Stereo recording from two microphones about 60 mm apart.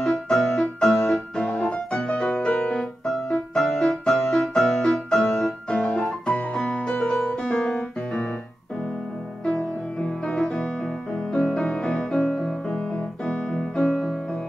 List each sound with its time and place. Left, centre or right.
0.0 s music: centre
7.5 s piano: left
9.5 s music: centre
12.1 s piano: centre
13.8 s music: centre